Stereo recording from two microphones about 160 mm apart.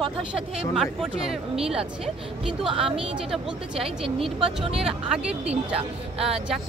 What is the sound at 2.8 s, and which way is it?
A woman's voice, centre (ahead or behind).